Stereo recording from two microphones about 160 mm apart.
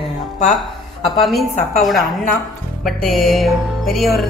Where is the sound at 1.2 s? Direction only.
Centre (ahead or behind).